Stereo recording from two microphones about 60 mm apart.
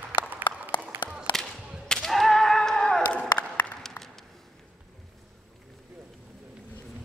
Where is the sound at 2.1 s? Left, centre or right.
Centre; by 3.7 s left.